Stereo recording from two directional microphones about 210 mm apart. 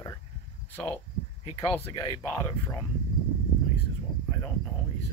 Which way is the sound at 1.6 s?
15° left (ahead or behind).